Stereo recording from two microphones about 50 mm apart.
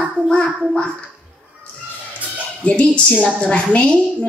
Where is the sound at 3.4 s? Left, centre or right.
Left.